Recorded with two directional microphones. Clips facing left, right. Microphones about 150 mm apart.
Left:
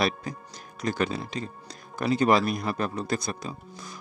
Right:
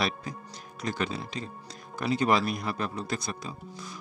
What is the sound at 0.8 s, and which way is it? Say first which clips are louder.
Speech: left 4 dB; 50° left (ahead or behind).